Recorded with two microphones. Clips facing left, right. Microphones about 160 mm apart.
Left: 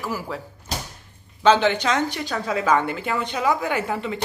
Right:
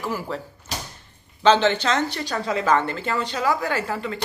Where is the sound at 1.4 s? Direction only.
10° left (ahead or behind).